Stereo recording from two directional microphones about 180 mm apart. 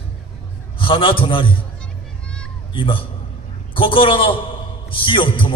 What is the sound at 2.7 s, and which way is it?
A man's voice, 30° left (ahead or behind).